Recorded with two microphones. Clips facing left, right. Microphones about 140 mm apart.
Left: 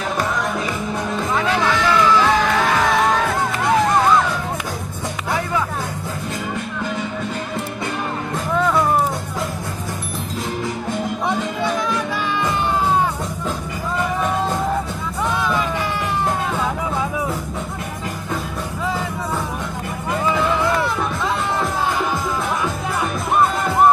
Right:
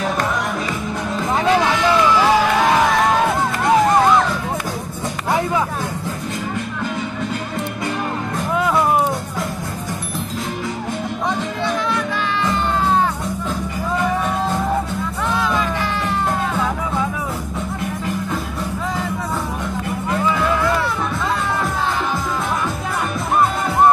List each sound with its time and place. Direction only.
1.3 s music: 25° right (ahead or behind)
8.5 s music: 10° right (ahead or behind)